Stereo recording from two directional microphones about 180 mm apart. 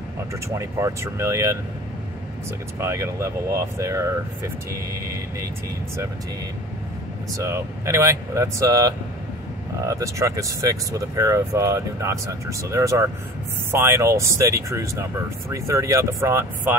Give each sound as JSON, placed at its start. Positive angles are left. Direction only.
{"t": 0.3, "sound": "speech", "side_deg": -15}
{"t": 2.8, "sound": "speech", "side_deg": -15}
{"t": 7.3, "sound": "speech", "side_deg": -15}